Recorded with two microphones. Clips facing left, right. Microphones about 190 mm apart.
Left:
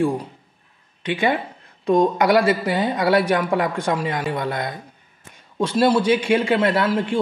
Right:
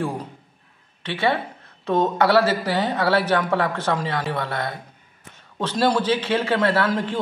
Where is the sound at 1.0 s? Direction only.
15° left (ahead or behind).